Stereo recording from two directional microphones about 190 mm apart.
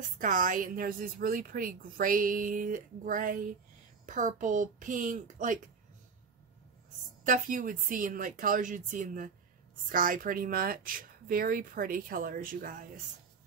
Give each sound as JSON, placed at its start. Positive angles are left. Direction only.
{"t": 0.2, "sound": "a woman's voice", "side_deg": -45}
{"t": 7.2, "sound": "a woman's voice", "side_deg": -45}